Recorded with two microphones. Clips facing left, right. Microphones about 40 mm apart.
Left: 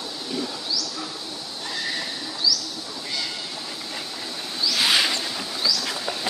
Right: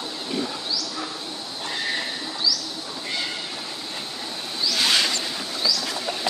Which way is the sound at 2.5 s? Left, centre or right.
Centre.